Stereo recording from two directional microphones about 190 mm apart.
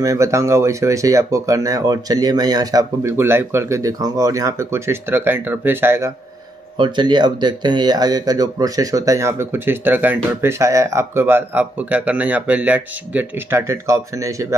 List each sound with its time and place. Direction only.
0.0 s speech: 15° right (ahead or behind)
6.8 s speech: 25° right (ahead or behind)